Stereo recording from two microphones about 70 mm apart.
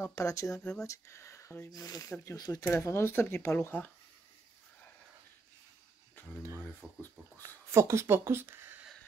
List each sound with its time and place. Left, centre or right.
0.1 s speech: left
1.7 s speech: left
2.0 s speech: left
2.3 s speech: left
2.6 s speech: left
6.2 s a sound: left
6.8 s speech: right
7.7 s speech: right